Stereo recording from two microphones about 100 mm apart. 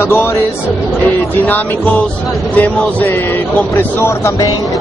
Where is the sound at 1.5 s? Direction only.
15° left (ahead or behind).